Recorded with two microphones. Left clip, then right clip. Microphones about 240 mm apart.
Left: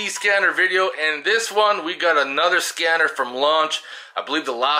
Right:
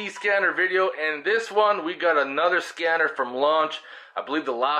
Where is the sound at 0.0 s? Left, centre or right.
Centre.